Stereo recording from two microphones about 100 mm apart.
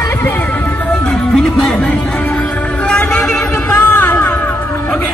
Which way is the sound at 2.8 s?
10° left (ahead or behind).